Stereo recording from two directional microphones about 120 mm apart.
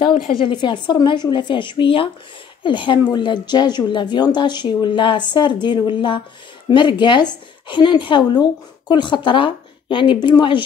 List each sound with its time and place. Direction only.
0.1 s a woman's voice: 45° left (ahead or behind)